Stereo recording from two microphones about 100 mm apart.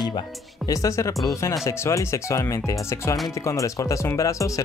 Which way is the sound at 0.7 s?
35° left (ahead or behind).